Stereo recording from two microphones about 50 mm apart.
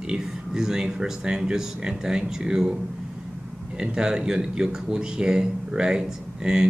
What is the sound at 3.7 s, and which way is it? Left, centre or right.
Speech, centre.